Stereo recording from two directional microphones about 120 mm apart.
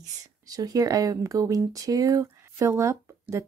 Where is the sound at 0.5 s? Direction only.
30° right (ahead or behind).